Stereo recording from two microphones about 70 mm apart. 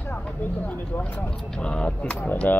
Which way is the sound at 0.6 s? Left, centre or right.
Left.